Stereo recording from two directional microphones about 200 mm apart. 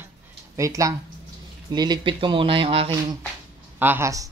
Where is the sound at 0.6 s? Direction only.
15° right (ahead or behind).